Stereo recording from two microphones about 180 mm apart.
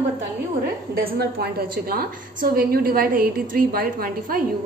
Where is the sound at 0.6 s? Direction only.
55° right (ahead or behind).